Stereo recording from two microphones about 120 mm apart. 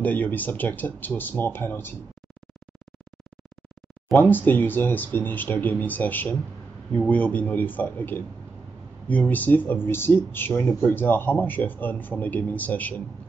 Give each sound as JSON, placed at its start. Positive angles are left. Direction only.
{"t": 0.0, "sound": "speech", "side_deg": 15}
{"t": 4.1, "sound": "speech", "side_deg": 15}